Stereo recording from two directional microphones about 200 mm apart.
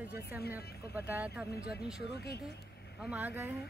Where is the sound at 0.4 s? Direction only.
50° left (ahead or behind).